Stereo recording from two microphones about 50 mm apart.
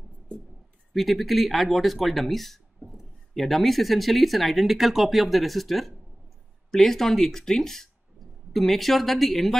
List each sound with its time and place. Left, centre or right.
0.9 s speech: centre